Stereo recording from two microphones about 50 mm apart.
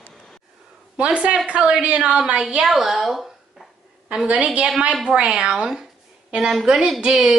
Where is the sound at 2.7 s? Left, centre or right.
Centre.